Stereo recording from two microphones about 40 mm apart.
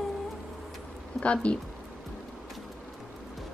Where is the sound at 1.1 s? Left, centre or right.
Left.